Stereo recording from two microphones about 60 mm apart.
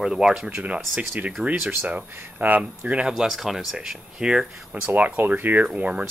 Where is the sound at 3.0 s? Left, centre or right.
Centre.